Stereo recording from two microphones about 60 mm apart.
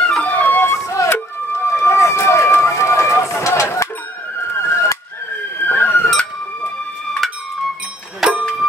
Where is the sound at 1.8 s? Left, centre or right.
Left.